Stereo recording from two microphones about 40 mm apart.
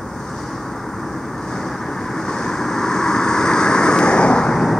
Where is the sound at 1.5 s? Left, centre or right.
Centre.